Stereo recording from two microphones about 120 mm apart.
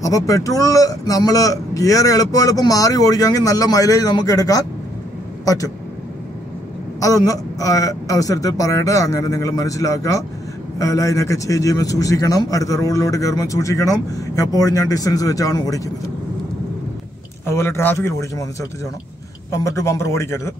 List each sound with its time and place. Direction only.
0.0 s a man's voice: 30° left (ahead or behind)
7.0 s a man's voice: 30° left (ahead or behind)
17.5 s a man's voice: 20° left (ahead or behind)